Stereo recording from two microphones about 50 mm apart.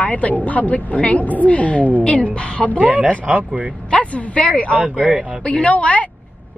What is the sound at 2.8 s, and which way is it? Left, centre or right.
Speech, right.